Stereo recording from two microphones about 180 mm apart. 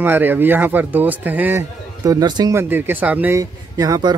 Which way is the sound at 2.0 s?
20° right (ahead or behind).